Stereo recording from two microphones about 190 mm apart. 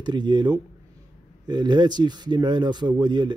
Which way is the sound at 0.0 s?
25° right (ahead or behind).